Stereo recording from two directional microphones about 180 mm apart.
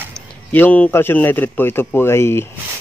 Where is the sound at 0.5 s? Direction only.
10° left (ahead or behind).